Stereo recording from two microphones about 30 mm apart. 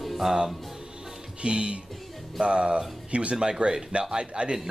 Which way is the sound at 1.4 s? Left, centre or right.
Right.